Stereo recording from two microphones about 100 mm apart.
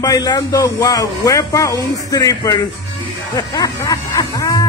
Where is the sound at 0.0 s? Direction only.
40° left (ahead or behind).